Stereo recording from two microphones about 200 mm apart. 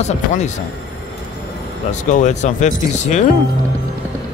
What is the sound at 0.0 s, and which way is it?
Speech, 35° left (ahead or behind).